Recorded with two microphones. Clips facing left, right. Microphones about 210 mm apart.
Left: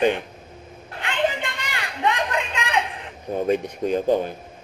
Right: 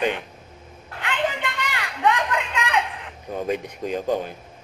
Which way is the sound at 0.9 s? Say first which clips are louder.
Left 2 dB; 25° left (ahead or behind).